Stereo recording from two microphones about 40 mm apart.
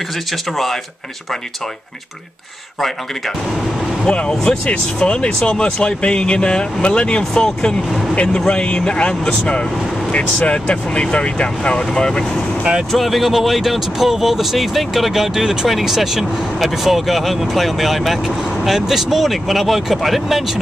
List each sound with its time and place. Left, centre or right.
4.3 s speech: centre
4.6 s speech: left
7.4 s speech: centre
12.9 s speech: centre